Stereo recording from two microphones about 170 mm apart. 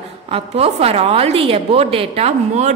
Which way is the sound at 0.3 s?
35° right (ahead or behind).